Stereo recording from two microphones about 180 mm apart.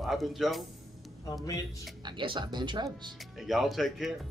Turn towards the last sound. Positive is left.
turn(degrees=0)  # may be behind; listen again after turning